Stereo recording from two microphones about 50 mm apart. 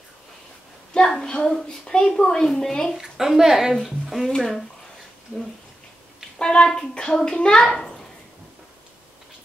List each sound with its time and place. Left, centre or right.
0.9 s a woman's voice: centre
3.0 s a woman's voice: centre
3.7 s speech: centre
6.3 s a woman's voice: centre